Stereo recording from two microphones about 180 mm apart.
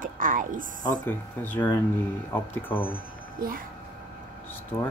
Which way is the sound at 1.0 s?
10° left (ahead or behind).